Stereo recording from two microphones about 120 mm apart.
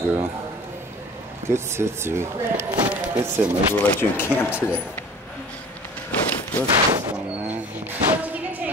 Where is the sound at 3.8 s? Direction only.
20° left (ahead or behind).